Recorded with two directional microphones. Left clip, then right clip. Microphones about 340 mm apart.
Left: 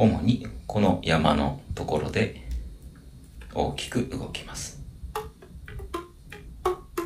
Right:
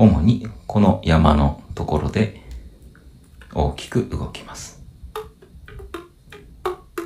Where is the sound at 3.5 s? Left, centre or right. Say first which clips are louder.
Right 5 dB; right.